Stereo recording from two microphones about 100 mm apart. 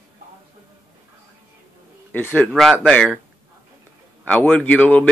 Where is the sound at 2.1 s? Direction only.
20° left (ahead or behind).